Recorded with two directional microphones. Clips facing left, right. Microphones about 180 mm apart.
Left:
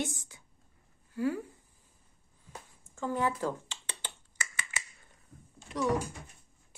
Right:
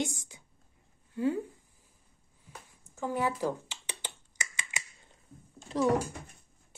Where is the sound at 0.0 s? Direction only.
15° right (ahead or behind).